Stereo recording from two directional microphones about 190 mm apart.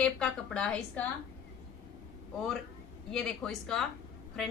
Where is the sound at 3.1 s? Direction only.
Centre (ahead or behind).